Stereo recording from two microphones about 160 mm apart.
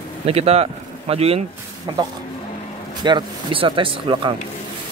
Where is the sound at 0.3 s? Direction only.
40° right (ahead or behind).